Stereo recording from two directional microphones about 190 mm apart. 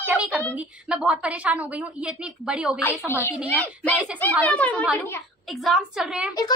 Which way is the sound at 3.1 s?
15° left (ahead or behind).